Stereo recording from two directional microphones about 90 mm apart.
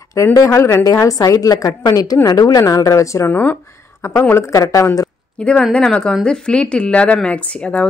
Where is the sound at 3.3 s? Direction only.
20° left (ahead or behind).